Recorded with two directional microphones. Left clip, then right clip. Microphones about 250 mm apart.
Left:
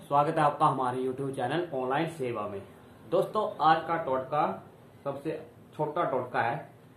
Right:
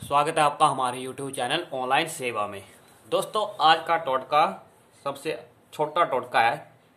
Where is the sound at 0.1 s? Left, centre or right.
Right.